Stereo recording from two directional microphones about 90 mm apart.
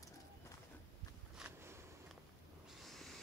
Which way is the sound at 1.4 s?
5° right (ahead or behind).